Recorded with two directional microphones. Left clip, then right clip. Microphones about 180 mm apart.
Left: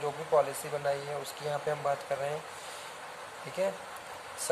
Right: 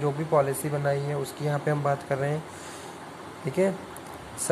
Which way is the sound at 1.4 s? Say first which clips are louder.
Right 4 dB; 15° right (ahead or behind).